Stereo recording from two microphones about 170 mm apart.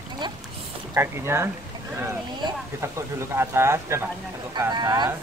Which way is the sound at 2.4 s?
25° right (ahead or behind).